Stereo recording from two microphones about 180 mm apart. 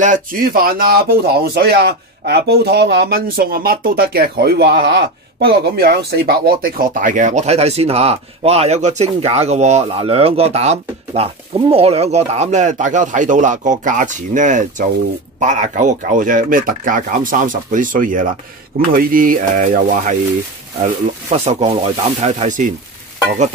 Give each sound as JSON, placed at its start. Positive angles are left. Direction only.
{"t": 0.0, "sound": "speech", "side_deg": -45}
{"t": 20.8, "sound": "speech", "side_deg": -35}